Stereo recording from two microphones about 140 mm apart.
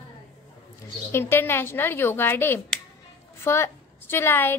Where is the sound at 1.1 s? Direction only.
15° left (ahead or behind).